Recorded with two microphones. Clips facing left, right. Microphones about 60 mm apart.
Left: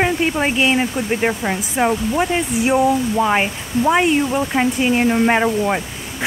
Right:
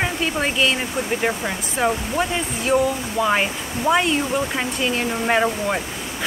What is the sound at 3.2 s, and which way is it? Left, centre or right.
Speech, centre.